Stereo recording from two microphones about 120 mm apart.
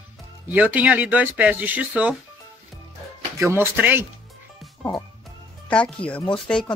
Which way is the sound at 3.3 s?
20° right (ahead or behind).